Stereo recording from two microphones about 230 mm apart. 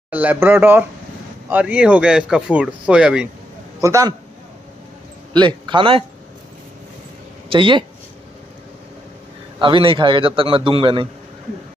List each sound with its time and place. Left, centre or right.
0.1 s speech: centre
5.3 s a man's voice: centre
7.4 s speech: right
9.6 s a man's voice: right